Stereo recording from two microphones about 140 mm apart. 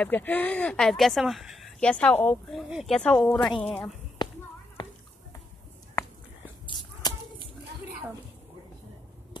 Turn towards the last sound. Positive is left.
turn(degrees=35)  # may be behind; listen again after turning